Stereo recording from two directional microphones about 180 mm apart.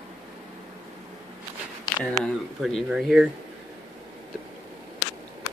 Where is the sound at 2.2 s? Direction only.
Centre (ahead or behind).